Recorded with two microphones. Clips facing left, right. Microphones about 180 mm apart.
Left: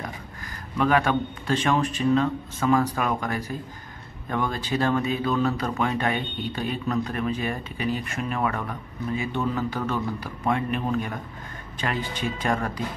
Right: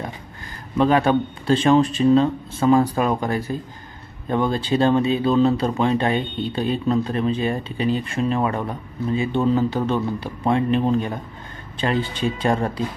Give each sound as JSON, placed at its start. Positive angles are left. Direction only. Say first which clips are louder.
{"t": 0.7, "sound": "speech", "louder": "right 5 dB", "side_deg": -30}